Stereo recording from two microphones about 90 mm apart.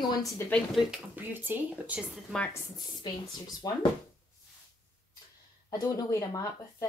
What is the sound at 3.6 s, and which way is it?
Speech, 45° left (ahead or behind).